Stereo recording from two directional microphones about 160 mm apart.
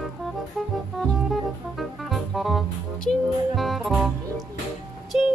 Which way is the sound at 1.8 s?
Centre (ahead or behind).